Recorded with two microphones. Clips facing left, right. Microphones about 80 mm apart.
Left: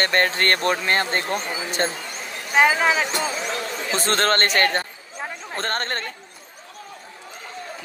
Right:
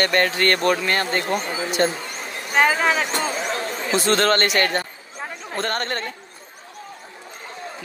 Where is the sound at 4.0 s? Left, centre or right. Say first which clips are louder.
Right 2 dB; left.